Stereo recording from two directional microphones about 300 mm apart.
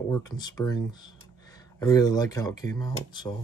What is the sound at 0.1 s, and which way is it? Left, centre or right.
Speech, centre.